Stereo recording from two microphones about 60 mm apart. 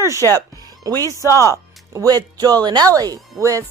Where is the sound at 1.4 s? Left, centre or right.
Right.